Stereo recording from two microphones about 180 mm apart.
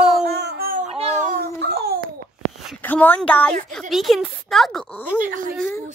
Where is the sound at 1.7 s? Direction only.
60° right (ahead or behind).